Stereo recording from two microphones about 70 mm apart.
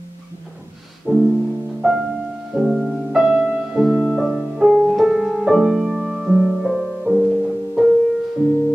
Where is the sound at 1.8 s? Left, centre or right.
Centre.